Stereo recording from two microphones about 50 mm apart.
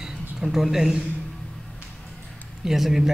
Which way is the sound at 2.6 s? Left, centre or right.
Centre.